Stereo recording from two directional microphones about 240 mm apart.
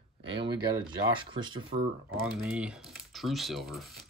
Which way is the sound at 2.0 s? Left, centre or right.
Right.